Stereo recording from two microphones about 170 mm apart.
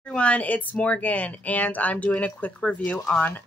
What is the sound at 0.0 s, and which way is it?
Speech, 5° left (ahead or behind).